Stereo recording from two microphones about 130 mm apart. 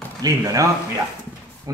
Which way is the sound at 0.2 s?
25° right (ahead or behind).